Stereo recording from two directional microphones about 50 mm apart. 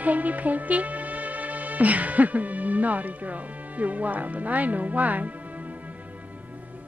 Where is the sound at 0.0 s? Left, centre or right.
Right.